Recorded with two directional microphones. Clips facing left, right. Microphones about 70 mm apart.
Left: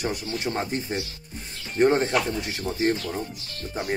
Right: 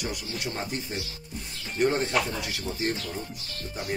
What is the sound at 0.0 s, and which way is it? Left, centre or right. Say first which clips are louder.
Speech: left 5 dB; left.